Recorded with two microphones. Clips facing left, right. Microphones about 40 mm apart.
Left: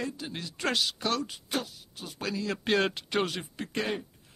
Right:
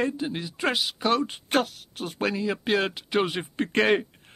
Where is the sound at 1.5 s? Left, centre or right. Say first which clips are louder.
Right 10 dB; right.